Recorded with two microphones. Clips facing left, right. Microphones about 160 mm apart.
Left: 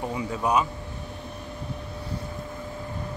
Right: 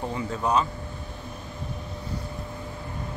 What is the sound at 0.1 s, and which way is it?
Speech, 10° left (ahead or behind).